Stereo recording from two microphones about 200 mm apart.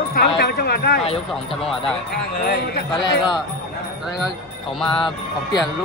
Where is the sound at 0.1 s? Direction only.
50° left (ahead or behind).